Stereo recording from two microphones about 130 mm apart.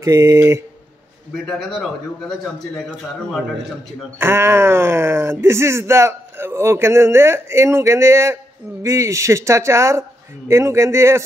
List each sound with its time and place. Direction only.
0.0 s speech: 25° right (ahead or behind)
1.3 s a man's voice: centre (ahead or behind)
4.2 s speech: 20° right (ahead or behind)